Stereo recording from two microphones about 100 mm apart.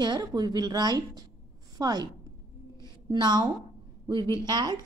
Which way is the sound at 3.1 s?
45° right (ahead or behind).